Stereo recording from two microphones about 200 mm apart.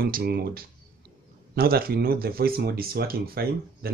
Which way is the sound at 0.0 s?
50° right (ahead or behind).